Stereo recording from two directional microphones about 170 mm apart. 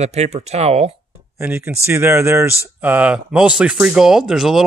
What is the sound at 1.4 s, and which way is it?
Speech, 15° right (ahead or behind).